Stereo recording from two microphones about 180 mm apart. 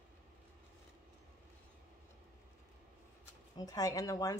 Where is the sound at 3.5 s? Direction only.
20° left (ahead or behind).